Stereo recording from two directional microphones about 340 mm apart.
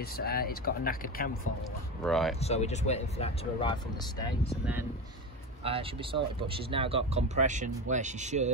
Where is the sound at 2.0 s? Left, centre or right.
Centre.